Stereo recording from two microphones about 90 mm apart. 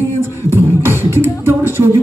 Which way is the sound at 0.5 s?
25° right (ahead or behind).